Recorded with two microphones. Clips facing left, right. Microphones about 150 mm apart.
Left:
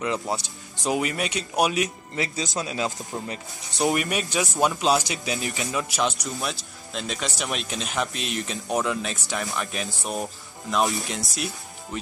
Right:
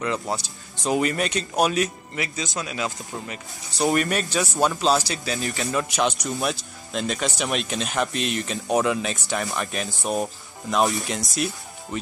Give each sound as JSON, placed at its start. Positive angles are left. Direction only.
{"t": 0.0, "sound": "speech", "side_deg": 20}
{"t": 0.8, "sound": "speech", "side_deg": 5}
{"t": 2.1, "sound": "speech", "side_deg": 25}
{"t": 3.7, "sound": "speech", "side_deg": 0}
{"t": 5.7, "sound": "speech", "side_deg": 5}